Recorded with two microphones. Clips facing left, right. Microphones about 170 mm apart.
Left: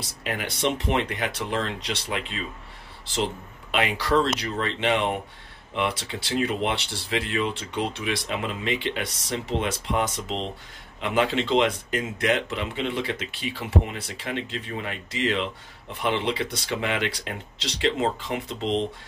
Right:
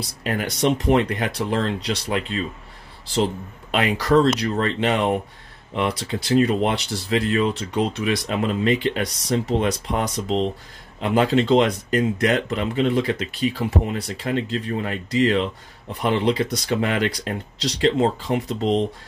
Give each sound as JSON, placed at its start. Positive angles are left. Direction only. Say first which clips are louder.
{"t": 0.2, "sound": "speech", "louder": "right 5 dB", "side_deg": -45}
{"t": 3.7, "sound": "speech", "louder": "right 5 dB", "side_deg": -45}